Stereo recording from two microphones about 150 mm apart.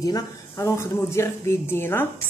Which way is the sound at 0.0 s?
20° left (ahead or behind).